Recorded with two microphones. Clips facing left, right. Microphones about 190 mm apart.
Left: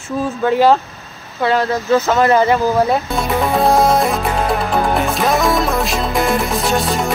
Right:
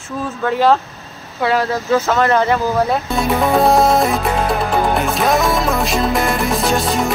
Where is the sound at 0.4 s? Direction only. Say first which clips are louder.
Left 2 dB; 5° left (ahead or behind).